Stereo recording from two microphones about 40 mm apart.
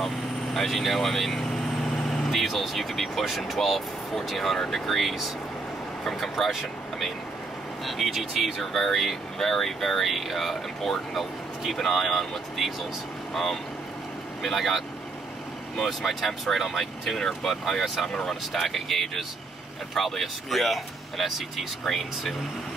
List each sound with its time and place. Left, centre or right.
0.0 s speech: centre
7.8 s speech: centre